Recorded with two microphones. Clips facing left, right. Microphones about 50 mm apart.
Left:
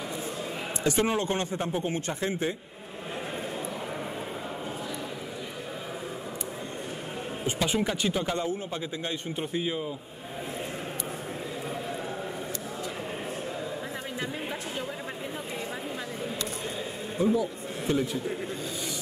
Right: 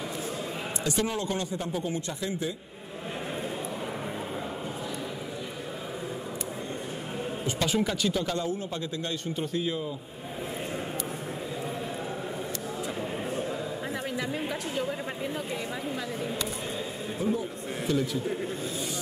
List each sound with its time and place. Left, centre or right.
0.8 s a man's voice: left
7.5 s speech: centre
17.2 s speech: left
17.9 s a man's voice: left